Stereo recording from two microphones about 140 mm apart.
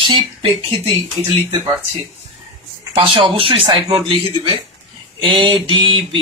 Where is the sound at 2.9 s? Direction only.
40° right (ahead or behind).